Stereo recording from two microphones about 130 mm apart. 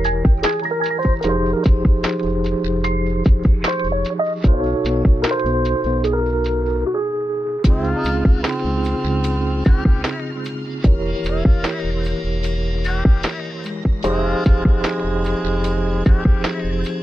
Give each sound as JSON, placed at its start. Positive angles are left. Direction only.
{"t": 0.0, "sound": "music", "side_deg": 0}
{"t": 1.3, "sound": "music", "side_deg": -30}
{"t": 1.6, "sound": "music", "side_deg": 0}
{"t": 5.0, "sound": "music", "side_deg": 0}
{"t": 7.6, "sound": "music", "side_deg": 0}
{"t": 11.3, "sound": "music", "side_deg": 0}
{"t": 13.8, "sound": "music", "side_deg": 0}